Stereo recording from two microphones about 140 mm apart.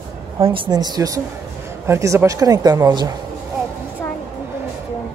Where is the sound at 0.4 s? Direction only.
40° right (ahead or behind).